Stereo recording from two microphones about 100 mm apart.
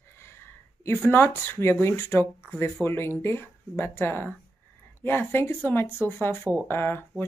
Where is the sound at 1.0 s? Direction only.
20° left (ahead or behind).